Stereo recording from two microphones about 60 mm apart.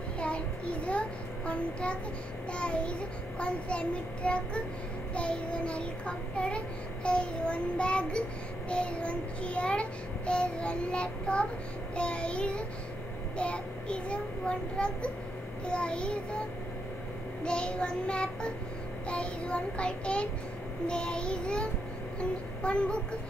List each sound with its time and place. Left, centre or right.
0.2 s child singing: left